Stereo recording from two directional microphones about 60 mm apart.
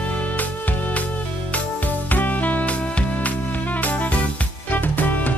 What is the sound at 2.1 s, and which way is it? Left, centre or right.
Music, left.